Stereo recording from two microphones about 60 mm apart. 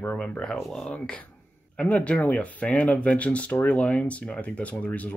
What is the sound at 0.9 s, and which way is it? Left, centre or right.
Speech, centre.